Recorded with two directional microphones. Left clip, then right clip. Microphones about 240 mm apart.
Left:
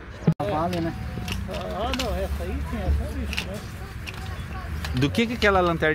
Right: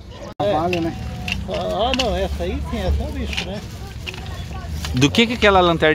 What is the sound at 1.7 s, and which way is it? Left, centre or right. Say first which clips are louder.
Speech: right 8 dB; right.